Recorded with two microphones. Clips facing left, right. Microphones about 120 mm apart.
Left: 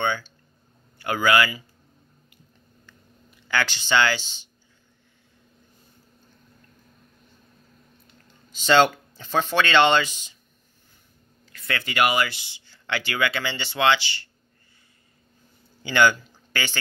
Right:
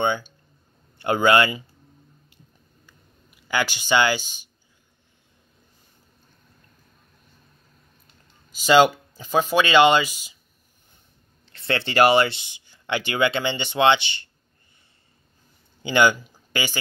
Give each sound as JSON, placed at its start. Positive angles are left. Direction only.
{"t": 0.0, "sound": "speech", "side_deg": -20}
{"t": 3.3, "sound": "speech", "side_deg": -15}
{"t": 8.5, "sound": "speech", "side_deg": -10}
{"t": 11.4, "sound": "speech", "side_deg": -30}
{"t": 15.8, "sound": "speech", "side_deg": -20}